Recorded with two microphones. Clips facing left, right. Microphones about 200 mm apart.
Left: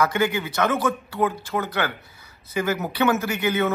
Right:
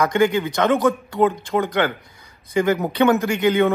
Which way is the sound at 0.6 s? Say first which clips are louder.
Right 3 dB; 25° right (ahead or behind).